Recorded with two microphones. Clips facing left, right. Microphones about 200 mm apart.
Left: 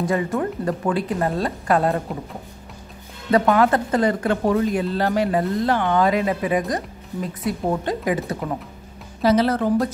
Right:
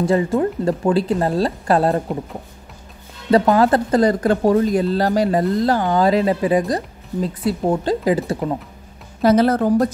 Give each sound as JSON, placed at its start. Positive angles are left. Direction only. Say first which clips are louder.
{"t": 0.0, "sound": "speech", "louder": "right 5 dB", "side_deg": -30}
{"t": 3.3, "sound": "speech", "louder": "right 3 dB", "side_deg": -30}
{"t": 9.2, "sound": "speech", "louder": "right 3 dB", "side_deg": -50}